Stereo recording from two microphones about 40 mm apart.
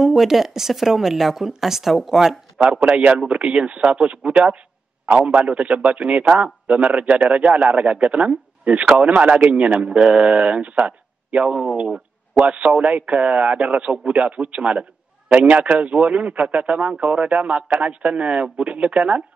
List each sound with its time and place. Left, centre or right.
0.0 s speech: centre
2.6 s a man's voice: right